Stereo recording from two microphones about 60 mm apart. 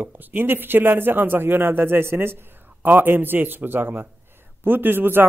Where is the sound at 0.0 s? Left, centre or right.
Right.